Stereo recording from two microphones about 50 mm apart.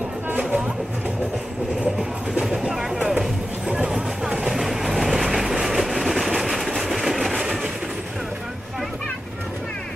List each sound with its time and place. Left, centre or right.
0.3 s a sound: right
2.4 s vehicle: centre
3.1 s music: centre